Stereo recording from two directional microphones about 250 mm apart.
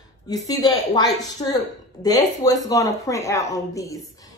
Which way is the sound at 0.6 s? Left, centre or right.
Centre.